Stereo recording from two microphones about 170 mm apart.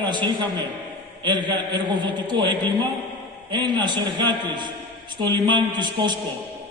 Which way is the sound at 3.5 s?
25° right (ahead or behind).